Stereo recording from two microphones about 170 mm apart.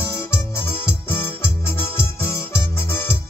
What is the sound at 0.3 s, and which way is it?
Music, 15° left (ahead or behind).